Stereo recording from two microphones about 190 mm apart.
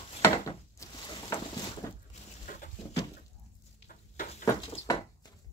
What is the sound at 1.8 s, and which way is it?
Boat, 20° left (ahead or behind).